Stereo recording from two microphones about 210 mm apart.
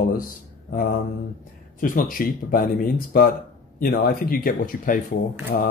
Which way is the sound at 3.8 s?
45° left (ahead or behind).